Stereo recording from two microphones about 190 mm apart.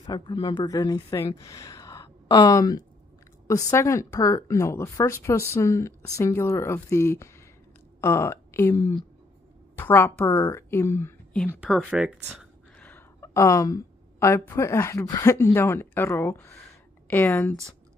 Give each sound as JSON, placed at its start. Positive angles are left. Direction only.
{"t": 0.0, "sound": "a woman's voice", "side_deg": 25}
{"t": 11.6, "sound": "a woman's voice", "side_deg": 0}